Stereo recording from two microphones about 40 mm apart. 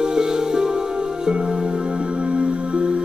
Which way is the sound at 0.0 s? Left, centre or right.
Centre.